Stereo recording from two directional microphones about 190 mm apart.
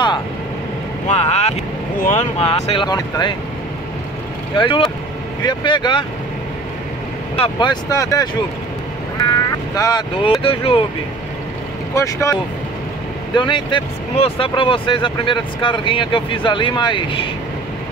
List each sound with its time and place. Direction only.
1.0 s speech: 35° left (ahead or behind)
4.6 s speech: 25° left (ahead or behind)
7.3 s speech: 25° left (ahead or behind)
11.9 s speech: 15° left (ahead or behind)